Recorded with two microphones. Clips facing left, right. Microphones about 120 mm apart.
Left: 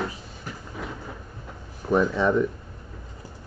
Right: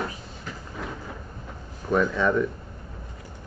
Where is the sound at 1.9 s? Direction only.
20° left (ahead or behind).